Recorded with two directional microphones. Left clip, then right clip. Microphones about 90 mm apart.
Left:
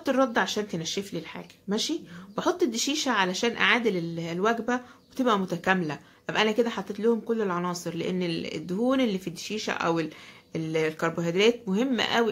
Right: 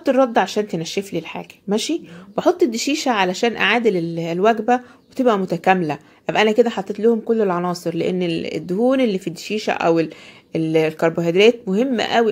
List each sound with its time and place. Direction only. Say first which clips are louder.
0.0 s speech: right 8 dB; 40° right (ahead or behind); by 2.0 s 60° right (ahead or behind)
2.3 s speech: right 9 dB; 45° right (ahead or behind)
11.8 s speech: right 7 dB; 35° right (ahead or behind)